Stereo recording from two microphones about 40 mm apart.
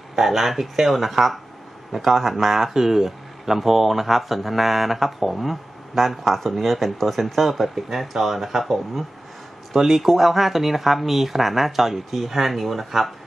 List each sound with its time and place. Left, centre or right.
0.1 s speech: centre